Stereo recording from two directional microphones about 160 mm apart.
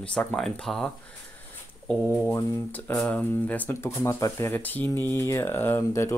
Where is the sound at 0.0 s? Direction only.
5° left (ahead or behind).